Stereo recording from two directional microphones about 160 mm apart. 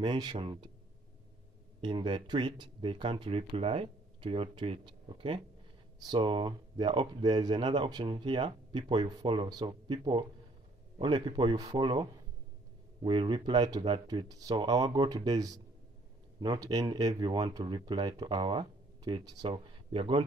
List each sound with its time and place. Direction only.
0.0 s speech: 30° right (ahead or behind)
1.8 s speech: 30° right (ahead or behind)